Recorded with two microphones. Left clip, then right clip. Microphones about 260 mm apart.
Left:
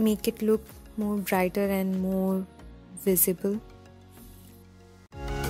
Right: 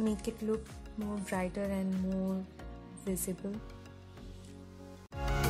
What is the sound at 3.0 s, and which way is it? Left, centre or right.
Speech, left.